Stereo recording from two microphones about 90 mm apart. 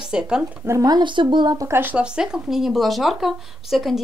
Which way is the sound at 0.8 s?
55° right (ahead or behind).